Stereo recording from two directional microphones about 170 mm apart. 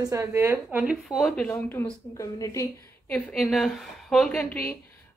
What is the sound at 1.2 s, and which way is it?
A woman's voice, centre (ahead or behind).